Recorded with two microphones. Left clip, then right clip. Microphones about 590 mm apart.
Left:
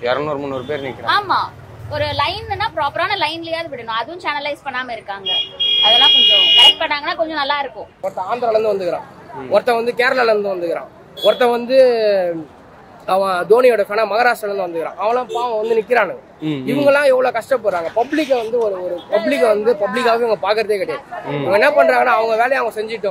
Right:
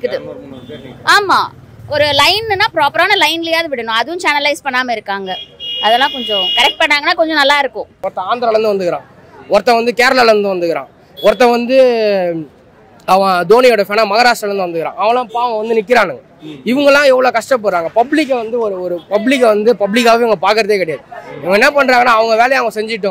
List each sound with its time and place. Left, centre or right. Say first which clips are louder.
1.0 s a woman's voice: right 7 dB; right